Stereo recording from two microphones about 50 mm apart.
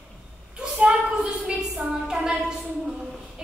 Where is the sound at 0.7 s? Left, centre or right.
Centre.